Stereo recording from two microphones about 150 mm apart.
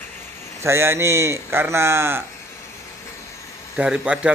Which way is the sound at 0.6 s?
15° right (ahead or behind).